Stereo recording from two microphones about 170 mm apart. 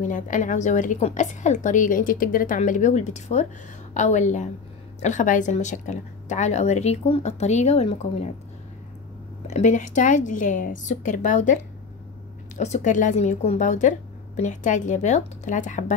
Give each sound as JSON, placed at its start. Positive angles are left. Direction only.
{"t": 0.1, "sound": "a woman's voice", "side_deg": 50}
{"t": 9.5, "sound": "a woman's voice", "side_deg": 45}